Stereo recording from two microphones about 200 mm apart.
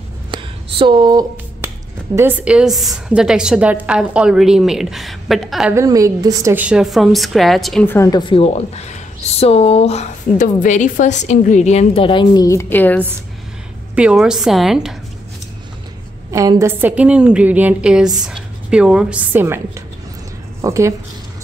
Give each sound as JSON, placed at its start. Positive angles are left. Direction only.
{"t": 0.3, "sound": "finger snapping", "side_deg": -25}
{"t": 2.1, "sound": "a woman's voice", "side_deg": -10}
{"t": 5.8, "sound": "a woman's voice", "side_deg": -15}
{"t": 13.9, "sound": "a woman's voice", "side_deg": -5}
{"t": 16.3, "sound": "a woman's voice", "side_deg": -15}
{"t": 20.6, "sound": "a woman's voice", "side_deg": -15}